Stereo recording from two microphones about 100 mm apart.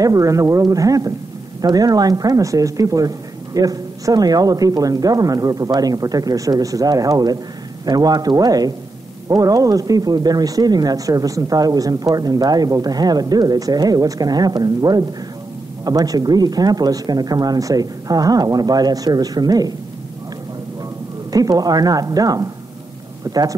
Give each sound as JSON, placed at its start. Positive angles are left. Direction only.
{"t": 0.0, "sound": "speech", "side_deg": -35}
{"t": 21.3, "sound": "speech", "side_deg": -40}